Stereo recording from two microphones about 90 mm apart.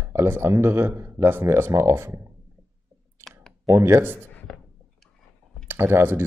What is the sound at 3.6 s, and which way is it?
Speech, 35° right (ahead or behind).